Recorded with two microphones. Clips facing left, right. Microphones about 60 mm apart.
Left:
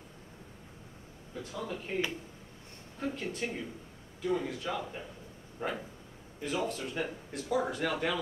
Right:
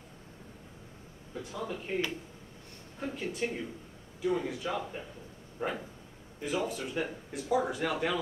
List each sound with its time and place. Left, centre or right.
1.3 s speech: centre
3.0 s speech: centre